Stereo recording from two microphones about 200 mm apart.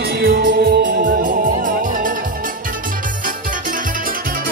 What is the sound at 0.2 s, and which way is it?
Music, 50° right (ahead or behind).